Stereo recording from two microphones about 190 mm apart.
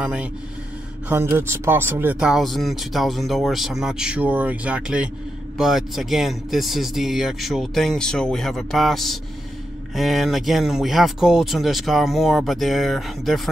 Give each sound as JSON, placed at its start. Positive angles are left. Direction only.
{"t": 0.0, "sound": "speech", "side_deg": -5}